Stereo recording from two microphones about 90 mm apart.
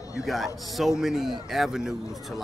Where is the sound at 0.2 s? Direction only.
Centre (ahead or behind).